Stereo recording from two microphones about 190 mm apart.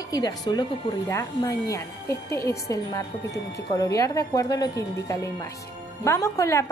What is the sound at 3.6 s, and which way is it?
A woman's voice, 20° left (ahead or behind).